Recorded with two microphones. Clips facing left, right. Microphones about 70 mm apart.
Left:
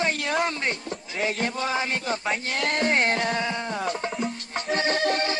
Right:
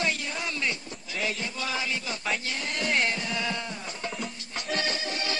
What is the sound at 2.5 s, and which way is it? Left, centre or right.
Speech, left.